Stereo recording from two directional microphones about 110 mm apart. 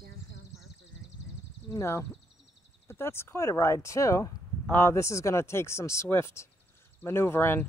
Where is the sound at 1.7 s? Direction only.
25° left (ahead or behind).